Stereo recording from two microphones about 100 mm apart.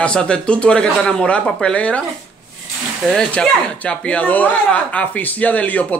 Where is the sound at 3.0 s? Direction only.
5° left (ahead or behind).